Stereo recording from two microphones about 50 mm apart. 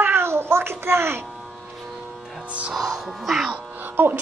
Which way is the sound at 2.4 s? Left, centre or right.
Right.